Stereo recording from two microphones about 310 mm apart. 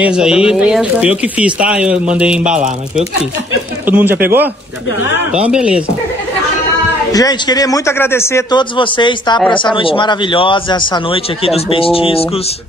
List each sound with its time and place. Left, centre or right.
0.0 s speech: centre
3.8 s speech: centre
7.1 s a man's voice: centre